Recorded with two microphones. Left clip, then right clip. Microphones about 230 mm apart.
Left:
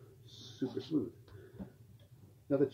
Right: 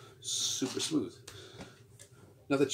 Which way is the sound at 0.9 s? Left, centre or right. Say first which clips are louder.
Right 1 dB; right.